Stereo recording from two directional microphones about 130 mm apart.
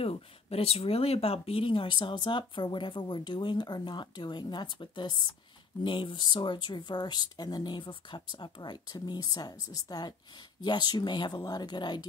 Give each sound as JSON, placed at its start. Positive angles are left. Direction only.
{"t": 0.0, "sound": "speech", "side_deg": 50}